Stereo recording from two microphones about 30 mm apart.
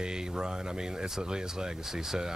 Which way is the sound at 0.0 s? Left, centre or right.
Right.